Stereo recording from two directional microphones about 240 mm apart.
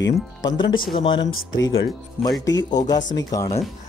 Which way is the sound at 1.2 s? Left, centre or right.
Left.